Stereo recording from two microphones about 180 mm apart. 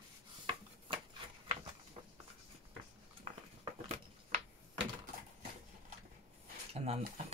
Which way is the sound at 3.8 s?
40° right (ahead or behind).